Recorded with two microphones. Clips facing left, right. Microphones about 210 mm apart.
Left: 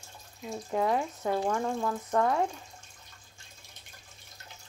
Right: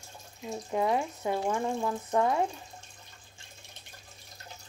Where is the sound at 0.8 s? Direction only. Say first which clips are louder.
Even; 15° right (ahead or behind).